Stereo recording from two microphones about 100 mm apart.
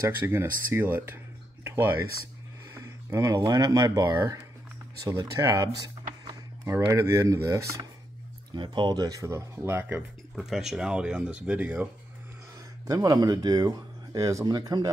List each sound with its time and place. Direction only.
0.0 s speech: 25° right (ahead or behind)
8.5 s speech: 50° right (ahead or behind); by 10.0 s 20° right (ahead or behind)
10.3 s speech: 5° right (ahead or behind)
12.8 s speech: 40° right (ahead or behind)